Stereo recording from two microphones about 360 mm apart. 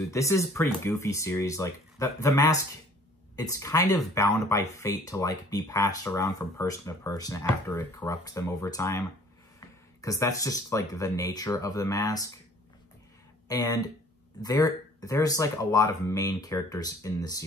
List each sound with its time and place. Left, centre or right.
0.1 s speech: centre
13.5 s speech: centre